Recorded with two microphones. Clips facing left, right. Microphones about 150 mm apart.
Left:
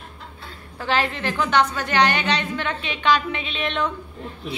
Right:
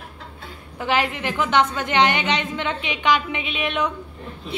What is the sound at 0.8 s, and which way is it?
A woman's voice, 15° right (ahead or behind).